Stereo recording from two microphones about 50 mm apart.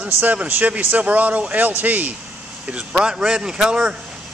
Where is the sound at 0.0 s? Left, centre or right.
Right.